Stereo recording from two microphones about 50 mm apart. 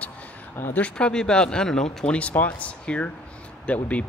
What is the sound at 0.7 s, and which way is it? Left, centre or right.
Speech, left.